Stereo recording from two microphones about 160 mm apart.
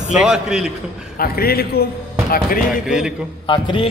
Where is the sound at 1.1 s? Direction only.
70° left (ahead or behind).